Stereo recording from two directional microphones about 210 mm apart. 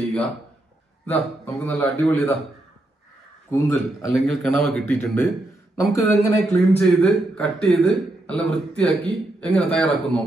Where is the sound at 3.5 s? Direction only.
10° left (ahead or behind).